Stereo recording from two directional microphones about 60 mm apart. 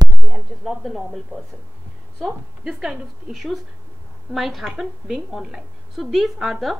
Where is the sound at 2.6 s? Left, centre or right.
Centre.